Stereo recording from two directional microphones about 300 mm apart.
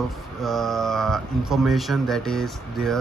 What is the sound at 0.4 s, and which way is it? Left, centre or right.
Speech, centre.